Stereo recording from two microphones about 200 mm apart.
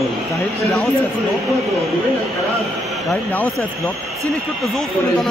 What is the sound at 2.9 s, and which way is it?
A man's voice, centre (ahead or behind).